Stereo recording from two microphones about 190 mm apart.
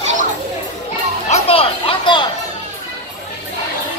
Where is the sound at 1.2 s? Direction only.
35° left (ahead or behind).